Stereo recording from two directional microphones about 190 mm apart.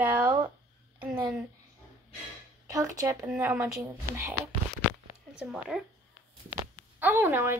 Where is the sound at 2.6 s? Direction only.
15° right (ahead or behind).